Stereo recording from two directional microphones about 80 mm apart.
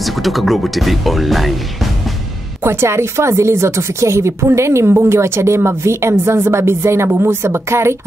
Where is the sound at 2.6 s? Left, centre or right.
Right.